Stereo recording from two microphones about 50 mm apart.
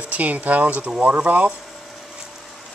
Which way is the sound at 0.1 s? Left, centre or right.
Right.